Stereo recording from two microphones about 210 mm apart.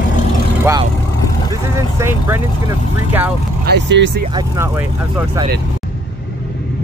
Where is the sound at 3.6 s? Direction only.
55° right (ahead or behind).